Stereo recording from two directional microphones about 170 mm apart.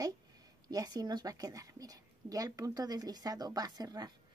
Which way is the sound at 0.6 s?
20° right (ahead or behind).